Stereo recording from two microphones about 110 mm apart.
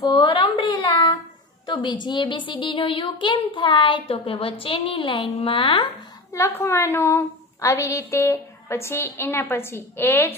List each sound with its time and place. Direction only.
0.1 s a sound: 50° left (ahead or behind)
1.7 s a woman's voice: 45° left (ahead or behind)
6.3 s a woman's voice: 25° left (ahead or behind)